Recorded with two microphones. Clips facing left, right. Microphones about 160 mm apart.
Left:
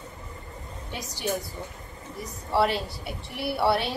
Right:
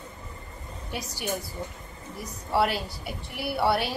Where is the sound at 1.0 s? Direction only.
20° left (ahead or behind).